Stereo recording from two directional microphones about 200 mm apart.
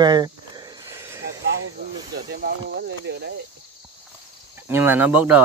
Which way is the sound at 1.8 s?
55° right (ahead or behind).